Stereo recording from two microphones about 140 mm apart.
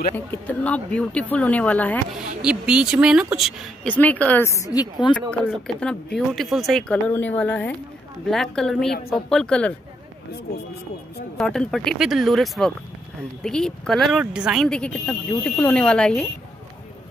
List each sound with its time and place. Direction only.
0.1 s speech: 15° left (ahead or behind)
2.4 s speech: 5° right (ahead or behind)
4.0 s a woman's voice: 10° left (ahead or behind); by 5.1 s 30° left (ahead or behind)
5.4 s speech: centre (ahead or behind)
11.3 s speech: 5° left (ahead or behind)